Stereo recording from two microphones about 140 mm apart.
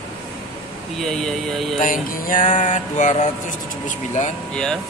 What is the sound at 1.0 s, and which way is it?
Speech, centre (ahead or behind).